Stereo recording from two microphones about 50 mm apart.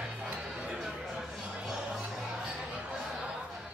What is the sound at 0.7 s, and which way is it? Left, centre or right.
Music, centre.